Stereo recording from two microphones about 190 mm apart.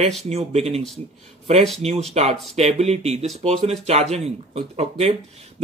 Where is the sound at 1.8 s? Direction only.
35° right (ahead or behind).